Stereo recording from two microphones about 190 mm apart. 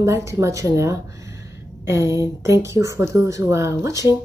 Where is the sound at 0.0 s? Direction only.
15° right (ahead or behind).